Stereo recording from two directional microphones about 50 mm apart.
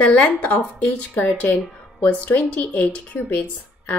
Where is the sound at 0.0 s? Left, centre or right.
Left.